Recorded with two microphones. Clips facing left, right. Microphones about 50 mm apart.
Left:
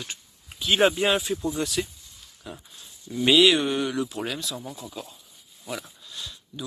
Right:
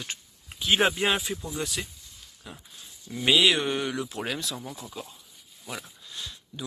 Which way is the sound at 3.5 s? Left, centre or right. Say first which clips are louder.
Left 3 dB; right.